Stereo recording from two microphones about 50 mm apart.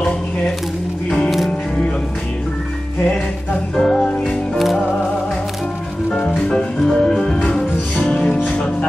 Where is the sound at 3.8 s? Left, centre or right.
Centre.